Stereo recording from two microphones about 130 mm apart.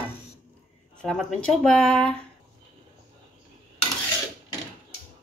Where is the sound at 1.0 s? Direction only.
5° left (ahead or behind).